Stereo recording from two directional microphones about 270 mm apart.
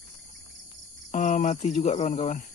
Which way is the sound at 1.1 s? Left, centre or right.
Left.